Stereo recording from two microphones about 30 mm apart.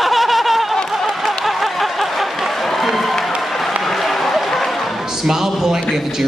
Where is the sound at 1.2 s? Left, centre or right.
Centre.